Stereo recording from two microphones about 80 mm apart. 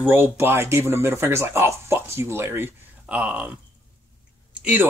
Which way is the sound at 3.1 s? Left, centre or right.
Centre.